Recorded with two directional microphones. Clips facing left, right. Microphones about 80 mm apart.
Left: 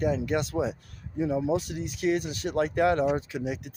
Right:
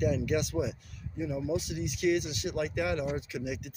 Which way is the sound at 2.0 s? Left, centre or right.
Left.